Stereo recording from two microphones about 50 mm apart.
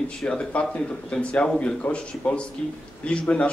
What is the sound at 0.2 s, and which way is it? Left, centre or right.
A man's voice, centre.